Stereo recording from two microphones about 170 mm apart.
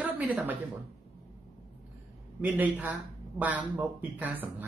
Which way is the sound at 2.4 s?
10° right (ahead or behind).